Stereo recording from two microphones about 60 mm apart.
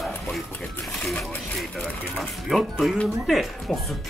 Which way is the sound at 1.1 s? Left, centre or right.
Left.